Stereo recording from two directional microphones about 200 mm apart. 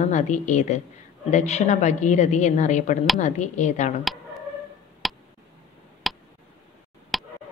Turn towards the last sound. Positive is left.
turn(degrees=0)  # may be behind; listen again after turning